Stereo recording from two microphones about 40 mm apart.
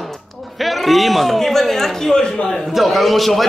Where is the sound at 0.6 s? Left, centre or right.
Centre.